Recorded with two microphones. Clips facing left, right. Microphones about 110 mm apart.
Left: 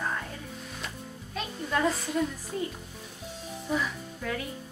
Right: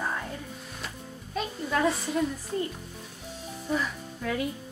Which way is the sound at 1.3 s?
Centre (ahead or behind).